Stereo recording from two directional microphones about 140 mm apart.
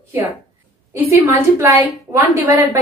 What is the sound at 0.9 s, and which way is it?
A woman's voice, 20° right (ahead or behind).